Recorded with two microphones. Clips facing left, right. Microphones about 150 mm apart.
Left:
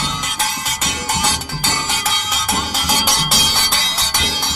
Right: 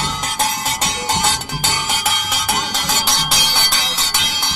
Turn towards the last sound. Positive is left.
turn(degrees=0)  # may be behind; listen again after turning